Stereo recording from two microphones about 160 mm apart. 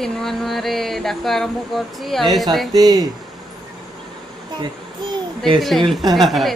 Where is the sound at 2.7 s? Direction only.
25° right (ahead or behind).